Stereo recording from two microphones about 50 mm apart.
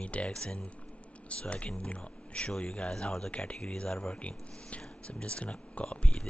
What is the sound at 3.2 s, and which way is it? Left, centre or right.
Speech, left.